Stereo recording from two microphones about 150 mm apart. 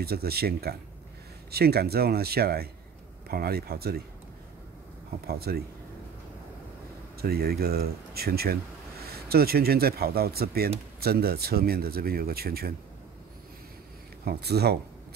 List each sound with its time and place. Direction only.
0.0 s speech: 90° right
5.2 s speech: 90° right
7.2 s speech: 90° right
14.2 s speech: 90° right